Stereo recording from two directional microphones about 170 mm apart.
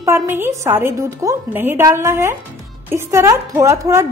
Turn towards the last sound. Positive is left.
turn(degrees=-15)  # may be behind; listen again after turning